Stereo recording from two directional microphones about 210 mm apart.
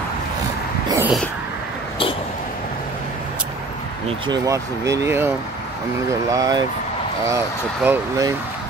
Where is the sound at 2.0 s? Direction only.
25° left (ahead or behind).